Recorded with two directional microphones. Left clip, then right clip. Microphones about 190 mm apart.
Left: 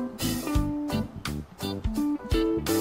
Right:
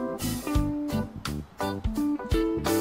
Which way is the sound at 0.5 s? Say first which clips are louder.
Right 4 dB; centre (ahead or behind).